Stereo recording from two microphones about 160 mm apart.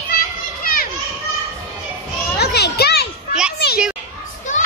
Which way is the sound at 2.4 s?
90° left.